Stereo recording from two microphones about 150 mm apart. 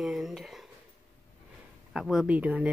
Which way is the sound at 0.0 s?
Centre (ahead or behind).